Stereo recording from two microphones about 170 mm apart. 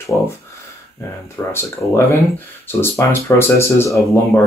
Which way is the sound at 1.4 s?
15° left (ahead or behind).